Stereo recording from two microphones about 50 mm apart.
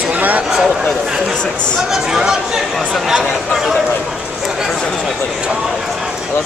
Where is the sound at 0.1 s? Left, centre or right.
Right.